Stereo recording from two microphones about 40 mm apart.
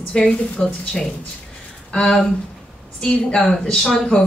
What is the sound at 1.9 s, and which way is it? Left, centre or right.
Speech, left.